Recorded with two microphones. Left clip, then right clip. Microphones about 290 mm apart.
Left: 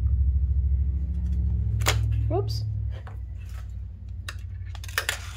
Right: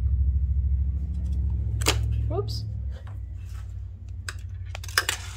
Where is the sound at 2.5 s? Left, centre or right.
Centre.